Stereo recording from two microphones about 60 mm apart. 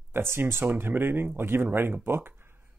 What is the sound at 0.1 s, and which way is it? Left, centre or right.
Speech, right.